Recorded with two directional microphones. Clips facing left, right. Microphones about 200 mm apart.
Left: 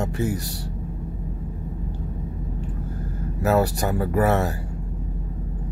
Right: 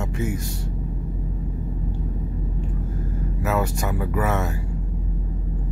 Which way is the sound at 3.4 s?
35° left (ahead or behind).